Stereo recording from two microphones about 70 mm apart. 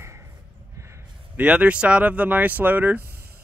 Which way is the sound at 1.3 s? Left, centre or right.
Centre.